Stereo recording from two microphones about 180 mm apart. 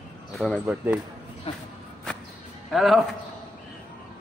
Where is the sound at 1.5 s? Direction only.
30° left (ahead or behind).